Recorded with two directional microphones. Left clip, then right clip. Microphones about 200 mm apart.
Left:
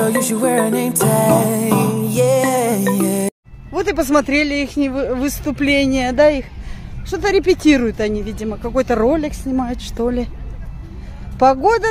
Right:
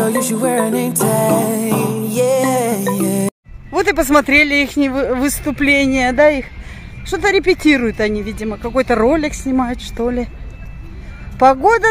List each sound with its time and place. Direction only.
0.0 s music: centre (ahead or behind)
3.7 s speech: 10° right (ahead or behind)
9.8 s speech: 5° right (ahead or behind)
11.3 s speech: 15° right (ahead or behind)